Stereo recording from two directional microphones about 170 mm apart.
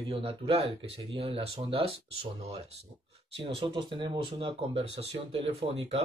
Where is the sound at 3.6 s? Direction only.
30° right (ahead or behind).